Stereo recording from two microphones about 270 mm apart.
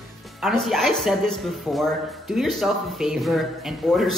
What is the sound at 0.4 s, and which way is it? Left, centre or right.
Speech, centre.